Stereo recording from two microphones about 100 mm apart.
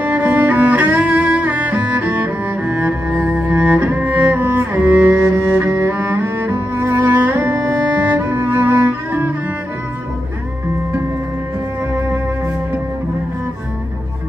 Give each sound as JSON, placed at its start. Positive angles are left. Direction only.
{"t": 0.0, "sound": "cello", "side_deg": -20}